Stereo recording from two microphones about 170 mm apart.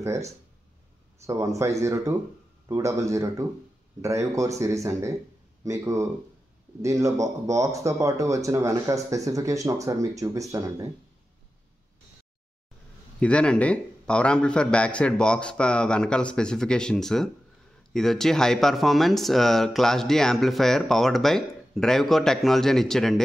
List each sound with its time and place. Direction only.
0.0 s speech: 20° right (ahead or behind)
13.2 s speech: 5° left (ahead or behind)